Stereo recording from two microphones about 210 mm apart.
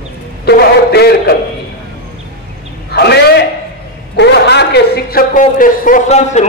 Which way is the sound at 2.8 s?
50° left (ahead or behind).